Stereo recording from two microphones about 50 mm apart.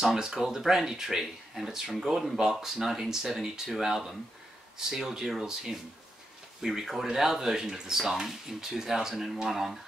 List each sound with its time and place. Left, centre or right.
0.0 s speech: centre